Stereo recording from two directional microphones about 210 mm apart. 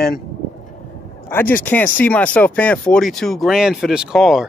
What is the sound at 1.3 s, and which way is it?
Speech, 10° left (ahead or behind).